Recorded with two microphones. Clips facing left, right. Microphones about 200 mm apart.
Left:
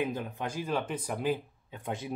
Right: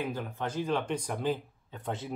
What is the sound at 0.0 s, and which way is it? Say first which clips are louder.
Speech: left 1 dB; 20° left (ahead or behind).